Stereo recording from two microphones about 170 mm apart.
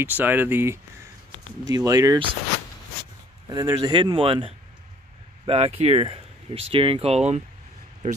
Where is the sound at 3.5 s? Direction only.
20° right (ahead or behind).